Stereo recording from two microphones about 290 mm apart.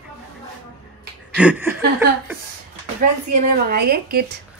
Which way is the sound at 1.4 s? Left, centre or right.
Centre.